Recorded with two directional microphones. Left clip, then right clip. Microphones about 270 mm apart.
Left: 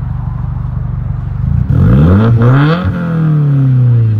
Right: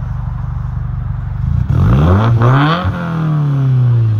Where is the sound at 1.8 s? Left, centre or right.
Right.